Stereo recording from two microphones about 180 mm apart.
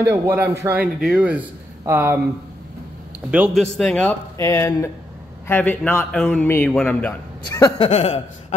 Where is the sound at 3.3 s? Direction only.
5° right (ahead or behind).